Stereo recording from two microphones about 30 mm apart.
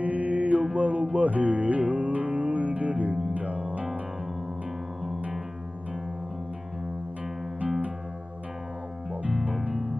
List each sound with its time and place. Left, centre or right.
0.0 s mantra: right
0.7 s music: right